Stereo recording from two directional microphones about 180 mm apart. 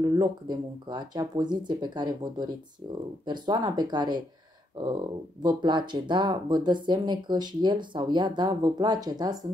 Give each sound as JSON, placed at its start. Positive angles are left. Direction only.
{"t": 0.0, "sound": "speech", "side_deg": -25}
{"t": 5.4, "sound": "speech", "side_deg": -25}